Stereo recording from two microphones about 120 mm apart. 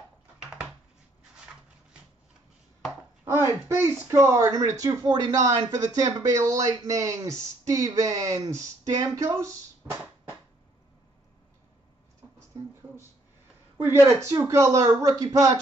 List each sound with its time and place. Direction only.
3.3 s speech: 20° right (ahead or behind)
13.9 s speech: 25° right (ahead or behind)